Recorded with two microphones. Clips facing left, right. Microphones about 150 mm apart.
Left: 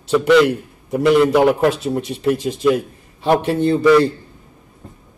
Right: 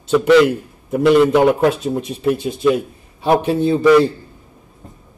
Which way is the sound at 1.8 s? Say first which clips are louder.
Even; 70° left (ahead or behind).